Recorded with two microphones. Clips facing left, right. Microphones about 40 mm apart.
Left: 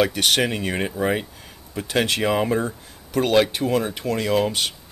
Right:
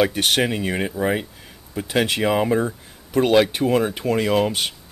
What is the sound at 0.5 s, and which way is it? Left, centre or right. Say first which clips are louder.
Speech: right 1 dB; centre.